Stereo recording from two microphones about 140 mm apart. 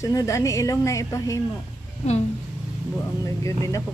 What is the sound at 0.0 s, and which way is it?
A woman's voice, 20° left (ahead or behind).